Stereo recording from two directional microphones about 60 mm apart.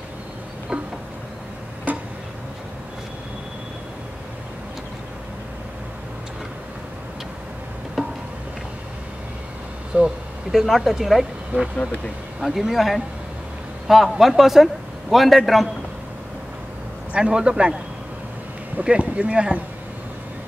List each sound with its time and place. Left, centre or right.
1.9 s a sound: right
9.9 s a man's voice: centre
17.1 s a man's voice: centre
18.8 s speech: centre